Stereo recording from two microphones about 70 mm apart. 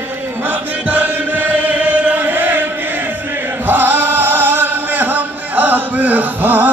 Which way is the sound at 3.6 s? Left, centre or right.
Right.